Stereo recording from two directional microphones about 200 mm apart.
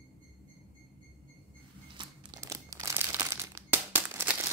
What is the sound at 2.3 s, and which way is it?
Crumpling, 15° right (ahead or behind).